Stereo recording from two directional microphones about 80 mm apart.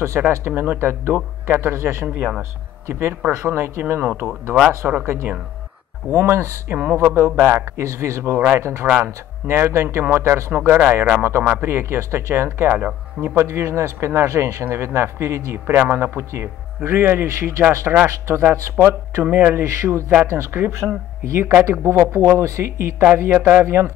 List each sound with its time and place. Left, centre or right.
0.0 s speech: right
2.0 s speech: right
2.9 s speech: right
13.3 s speech: right